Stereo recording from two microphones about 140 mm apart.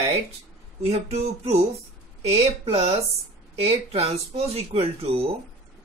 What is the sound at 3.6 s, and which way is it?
Speech, 45° right (ahead or behind).